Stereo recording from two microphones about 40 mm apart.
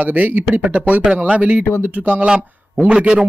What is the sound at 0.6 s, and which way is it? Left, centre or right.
Speech, right.